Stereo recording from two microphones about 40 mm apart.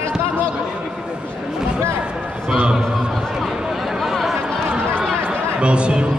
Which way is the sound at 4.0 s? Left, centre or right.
Centre.